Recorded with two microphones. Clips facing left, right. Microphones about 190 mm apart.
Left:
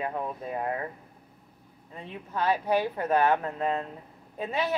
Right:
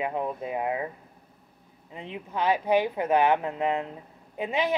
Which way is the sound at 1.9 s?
15° right (ahead or behind).